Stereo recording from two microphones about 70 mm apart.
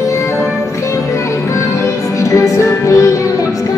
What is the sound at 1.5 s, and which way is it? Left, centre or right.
Music, left.